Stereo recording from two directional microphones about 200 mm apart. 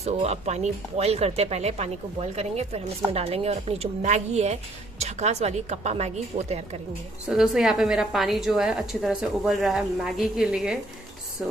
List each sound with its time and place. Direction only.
0.0 s a woman's voice: 30° right (ahead or behind)
7.2 s a woman's voice: centre (ahead or behind)